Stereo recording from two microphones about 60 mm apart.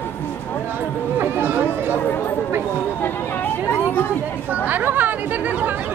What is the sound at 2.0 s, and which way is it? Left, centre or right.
Chatter, left.